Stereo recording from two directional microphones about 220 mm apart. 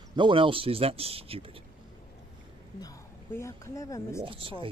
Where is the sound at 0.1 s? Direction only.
20° right (ahead or behind).